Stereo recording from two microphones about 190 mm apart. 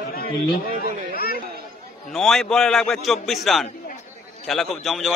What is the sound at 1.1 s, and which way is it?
Chatter, 50° left (ahead or behind).